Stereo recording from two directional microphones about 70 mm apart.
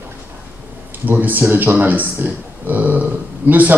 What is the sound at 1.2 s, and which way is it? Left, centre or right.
Speech, right.